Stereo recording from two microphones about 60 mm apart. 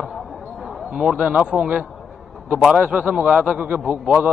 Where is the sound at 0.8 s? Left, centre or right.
Centre.